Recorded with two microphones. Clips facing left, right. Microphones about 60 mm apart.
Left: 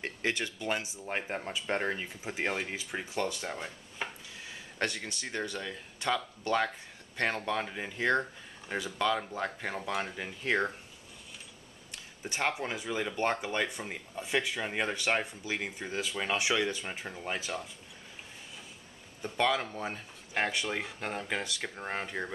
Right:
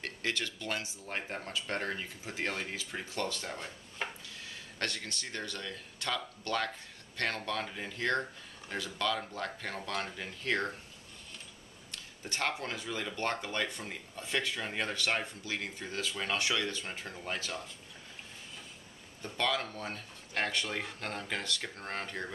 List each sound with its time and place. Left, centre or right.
0.0 s speech: centre
4.0 s a sound: centre
4.4 s speech: centre
11.9 s speech: centre
19.2 s speech: centre